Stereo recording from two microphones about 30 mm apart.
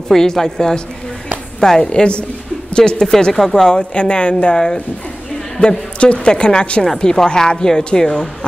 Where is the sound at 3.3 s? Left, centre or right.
Centre.